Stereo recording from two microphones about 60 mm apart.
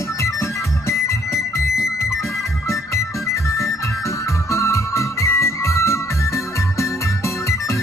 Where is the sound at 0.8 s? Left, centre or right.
Left.